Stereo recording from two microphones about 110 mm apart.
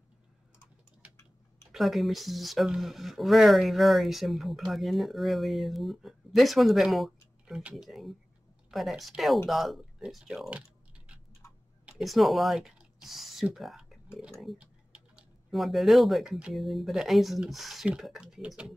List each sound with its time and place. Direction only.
1.7 s speech: centre (ahead or behind)
11.4 s tick-tock: 25° left (ahead or behind)
12.0 s speech: centre (ahead or behind)